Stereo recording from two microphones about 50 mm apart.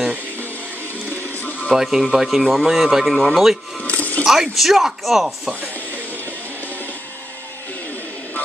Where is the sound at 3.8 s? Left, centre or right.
Left.